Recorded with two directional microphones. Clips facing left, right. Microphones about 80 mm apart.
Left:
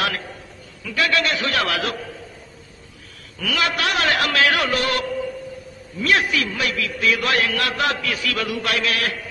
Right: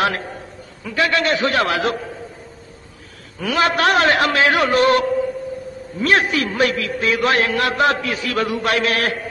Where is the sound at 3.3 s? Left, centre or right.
Right.